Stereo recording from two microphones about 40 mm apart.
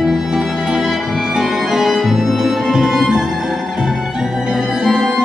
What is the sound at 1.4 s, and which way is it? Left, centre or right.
Music, centre.